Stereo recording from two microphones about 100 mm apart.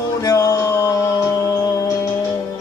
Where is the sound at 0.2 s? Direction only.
40° left (ahead or behind).